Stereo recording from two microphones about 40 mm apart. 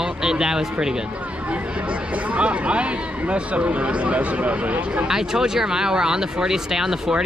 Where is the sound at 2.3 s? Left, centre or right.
Right.